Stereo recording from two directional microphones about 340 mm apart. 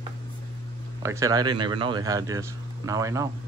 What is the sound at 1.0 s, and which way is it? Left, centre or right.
Speech, centre.